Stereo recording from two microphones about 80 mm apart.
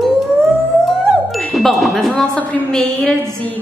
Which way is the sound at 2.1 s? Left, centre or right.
Centre.